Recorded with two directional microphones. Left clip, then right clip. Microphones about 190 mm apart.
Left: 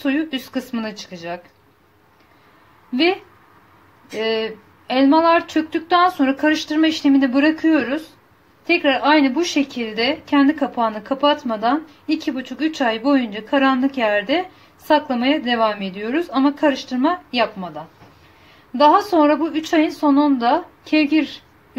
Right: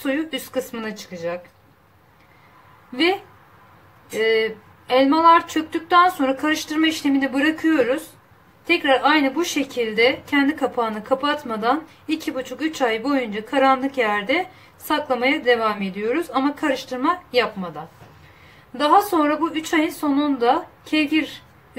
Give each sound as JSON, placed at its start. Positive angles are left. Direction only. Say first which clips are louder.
{"t": 0.0, "sound": "a woman's voice", "louder": "left 2 dB", "side_deg": 25}
{"t": 4.2, "sound": "a woman's voice", "louder": "right 2 dB", "side_deg": 30}
{"t": 18.9, "sound": "a woman's voice", "louder": "left 2 dB", "side_deg": 25}